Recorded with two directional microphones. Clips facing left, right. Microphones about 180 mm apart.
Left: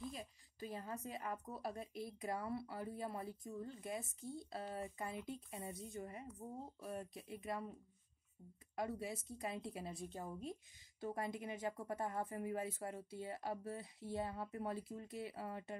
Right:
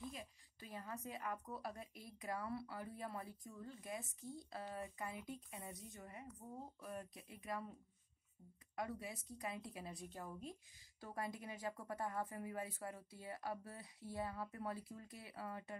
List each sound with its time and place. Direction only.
0.1 s a woman's voice: 30° left (ahead or behind)
8.7 s a woman's voice: 25° left (ahead or behind)